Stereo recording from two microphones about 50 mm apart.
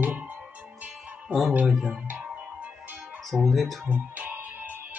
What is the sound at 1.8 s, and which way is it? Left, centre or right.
Speech, centre.